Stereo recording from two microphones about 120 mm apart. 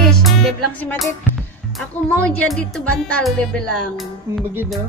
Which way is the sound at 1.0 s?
Centre (ahead or behind).